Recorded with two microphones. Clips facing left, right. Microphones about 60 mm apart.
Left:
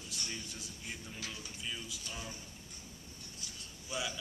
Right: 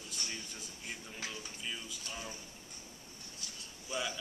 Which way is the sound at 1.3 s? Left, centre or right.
Centre.